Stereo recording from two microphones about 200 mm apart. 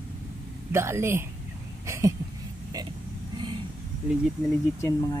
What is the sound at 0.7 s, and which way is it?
A woman's voice, 15° right (ahead or behind).